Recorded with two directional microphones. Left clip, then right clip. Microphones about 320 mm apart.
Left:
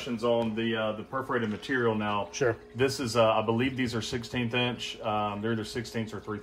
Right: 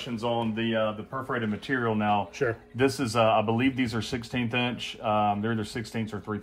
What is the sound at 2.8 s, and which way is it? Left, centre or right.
Speech, centre.